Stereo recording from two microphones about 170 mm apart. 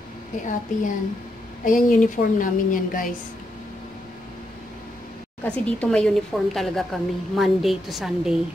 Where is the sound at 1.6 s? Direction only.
50° left (ahead or behind).